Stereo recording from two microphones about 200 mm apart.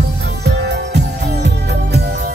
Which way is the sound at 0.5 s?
60° right (ahead or behind).